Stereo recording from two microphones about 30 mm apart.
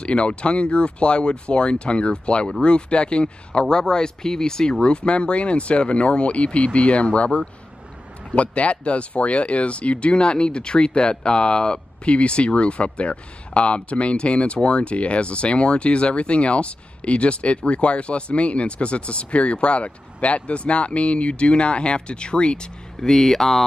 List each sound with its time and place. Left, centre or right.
0.0 s speech: left
3.6 s speech: left
4.8 s speech: left
22.9 s speech: centre